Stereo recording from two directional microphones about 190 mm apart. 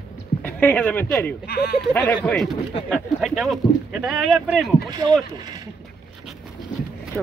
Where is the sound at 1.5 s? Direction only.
55° left (ahead or behind).